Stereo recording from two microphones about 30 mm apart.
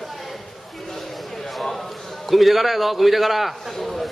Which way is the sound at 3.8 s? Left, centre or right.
Centre.